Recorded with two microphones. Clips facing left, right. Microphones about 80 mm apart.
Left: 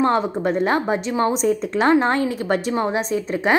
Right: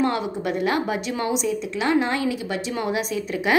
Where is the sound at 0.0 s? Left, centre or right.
Left.